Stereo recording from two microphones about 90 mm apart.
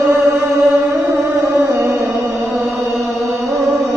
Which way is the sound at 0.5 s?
35° right (ahead or behind).